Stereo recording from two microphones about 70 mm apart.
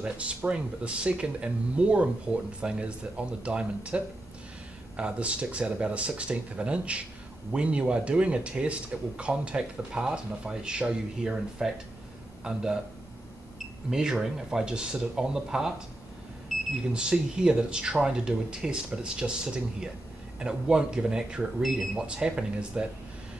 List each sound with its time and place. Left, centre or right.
0.0 s speech: centre
13.8 s speech: centre
16.9 s speech: centre